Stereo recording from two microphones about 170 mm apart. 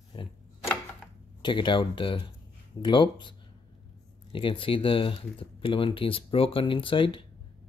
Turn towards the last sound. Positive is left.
turn(degrees=30)  # may be behind; listen again after turning